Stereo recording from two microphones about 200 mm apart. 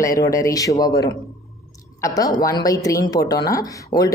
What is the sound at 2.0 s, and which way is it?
Speech, 20° left (ahead or behind).